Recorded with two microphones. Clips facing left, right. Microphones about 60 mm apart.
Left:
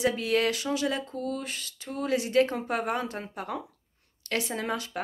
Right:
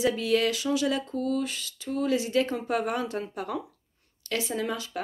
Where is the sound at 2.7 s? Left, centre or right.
Left.